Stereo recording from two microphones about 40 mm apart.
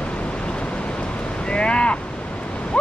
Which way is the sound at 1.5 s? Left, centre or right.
Left.